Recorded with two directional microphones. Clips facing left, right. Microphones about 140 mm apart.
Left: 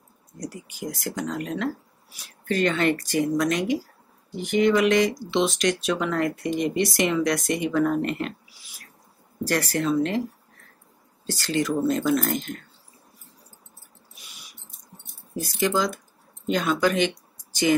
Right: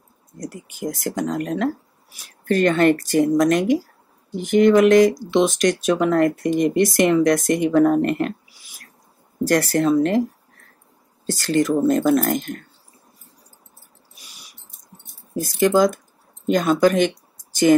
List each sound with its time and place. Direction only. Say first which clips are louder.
0.4 s speech: right 4 dB; 50° right (ahead or behind)
9.5 s speech: right 6 dB; 45° right (ahead or behind)
11.2 s speech: right 6 dB; 50° right (ahead or behind)
15.3 s speech: right 7 dB; 45° right (ahead or behind)